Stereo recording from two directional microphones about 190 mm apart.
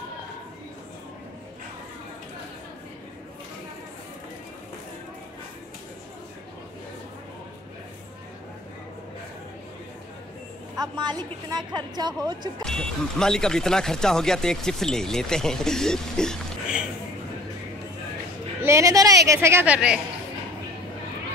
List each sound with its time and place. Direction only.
10.8 s a woman's voice: 20° right (ahead or behind)
12.6 s speech: 5° left (ahead or behind)
18.6 s speech: 15° right (ahead or behind)